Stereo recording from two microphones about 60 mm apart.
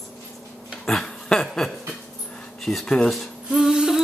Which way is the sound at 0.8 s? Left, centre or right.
Centre.